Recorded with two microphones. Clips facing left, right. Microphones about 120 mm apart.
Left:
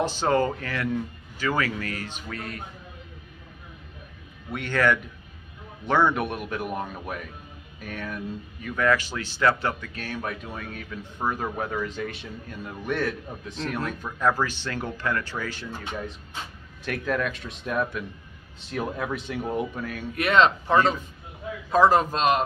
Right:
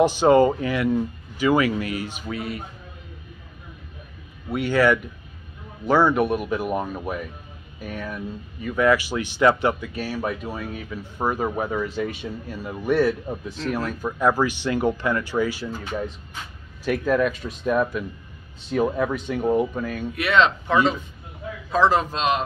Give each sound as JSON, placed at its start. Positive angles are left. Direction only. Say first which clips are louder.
{"t": 0.0, "sound": "speech", "louder": "right 7 dB", "side_deg": -15}
{"t": 4.5, "sound": "speech", "louder": "right 5 dB", "side_deg": -5}
{"t": 16.8, "sound": "speech", "louder": "right 6 dB", "side_deg": -5}
{"t": 20.2, "sound": "speech", "louder": "even", "side_deg": 40}
{"t": 21.8, "sound": "a man's voice", "louder": "even", "side_deg": 45}